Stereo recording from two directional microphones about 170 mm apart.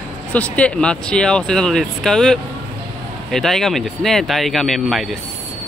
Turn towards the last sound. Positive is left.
turn(degrees=0)  # may be behind; listen again after turning